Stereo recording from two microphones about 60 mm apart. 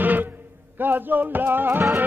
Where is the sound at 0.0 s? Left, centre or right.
Right.